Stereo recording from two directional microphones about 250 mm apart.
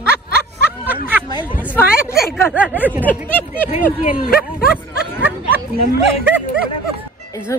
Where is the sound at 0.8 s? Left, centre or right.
Centre.